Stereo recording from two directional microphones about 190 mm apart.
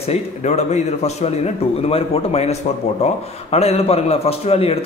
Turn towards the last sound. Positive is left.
turn(degrees=30)  # may be behind; listen again after turning